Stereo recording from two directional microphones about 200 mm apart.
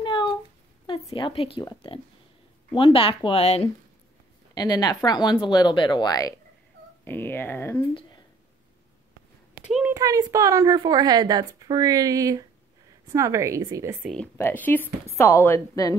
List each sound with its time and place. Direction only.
0.0 s a sound: 25° left (ahead or behind)
0.8 s a woman's voice: 25° left (ahead or behind)
4.6 s speech: 20° left (ahead or behind)
9.7 s a sound: 5° right (ahead or behind)
9.9 s a woman's voice: 15° right (ahead or behind)
14.0 s speech: 5° left (ahead or behind)